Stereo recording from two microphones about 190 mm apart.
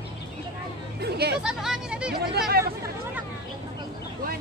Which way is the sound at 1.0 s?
60° right (ahead or behind).